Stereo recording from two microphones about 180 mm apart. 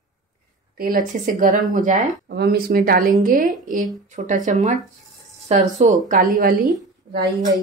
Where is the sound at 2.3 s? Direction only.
65° right (ahead or behind); by 4.7 s 45° right (ahead or behind).